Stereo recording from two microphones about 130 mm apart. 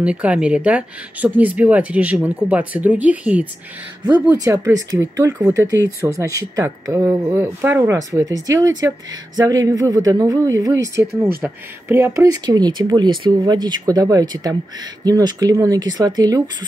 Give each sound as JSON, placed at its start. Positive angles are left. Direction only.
{"t": 0.0, "sound": "speech", "side_deg": -10}
{"t": 4.5, "sound": "speech", "side_deg": -20}